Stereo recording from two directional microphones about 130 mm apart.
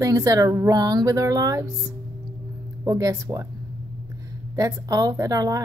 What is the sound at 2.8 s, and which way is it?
Speech, 25° right (ahead or behind).